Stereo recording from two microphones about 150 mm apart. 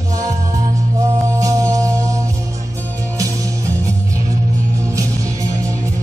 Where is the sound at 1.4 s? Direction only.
20° right (ahead or behind).